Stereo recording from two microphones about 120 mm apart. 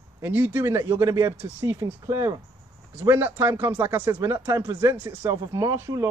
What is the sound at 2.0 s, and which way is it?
Speech, 30° right (ahead or behind).